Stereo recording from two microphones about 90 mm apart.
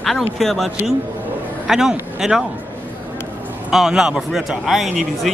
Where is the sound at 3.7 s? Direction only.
5° right (ahead or behind).